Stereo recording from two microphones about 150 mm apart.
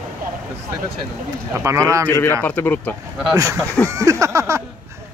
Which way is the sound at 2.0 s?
15° left (ahead or behind).